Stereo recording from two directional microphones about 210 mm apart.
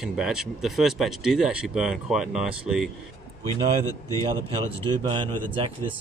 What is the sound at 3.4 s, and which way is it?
Speech, 15° left (ahead or behind).